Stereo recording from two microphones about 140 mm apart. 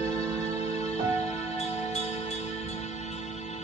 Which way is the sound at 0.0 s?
50° left (ahead or behind).